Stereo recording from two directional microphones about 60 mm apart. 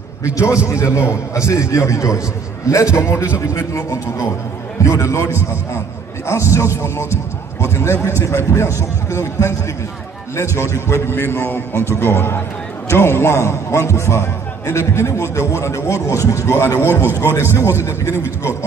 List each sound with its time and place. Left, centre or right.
0.2 s a man's voice: left
6.2 s a man's voice: left
10.6 s a man's voice: left
16.9 s a man's voice: right
17.2 s a man's voice: left